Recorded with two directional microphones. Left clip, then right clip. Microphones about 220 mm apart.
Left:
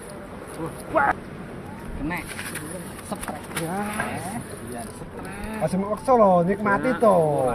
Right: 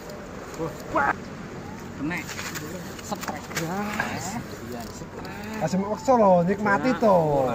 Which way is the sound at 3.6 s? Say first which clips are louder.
Left 2 dB; 5° right (ahead or behind).